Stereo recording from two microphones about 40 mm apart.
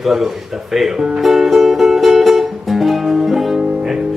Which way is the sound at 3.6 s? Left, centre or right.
Centre.